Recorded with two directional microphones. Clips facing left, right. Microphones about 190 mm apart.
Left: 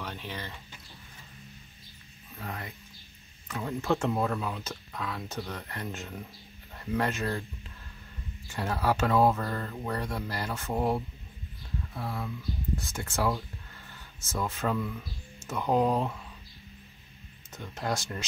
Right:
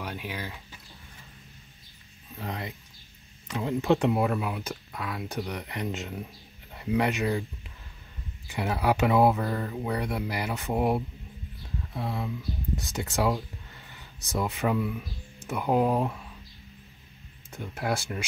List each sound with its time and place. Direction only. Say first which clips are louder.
0.0 s speech: right 3 dB; 10° right (ahead or behind)
2.3 s speech: right 4 dB; 15° right (ahead or behind)
8.5 s speech: right 2 dB; 15° right (ahead or behind)
17.6 s speech: right 2 dB; 10° right (ahead or behind)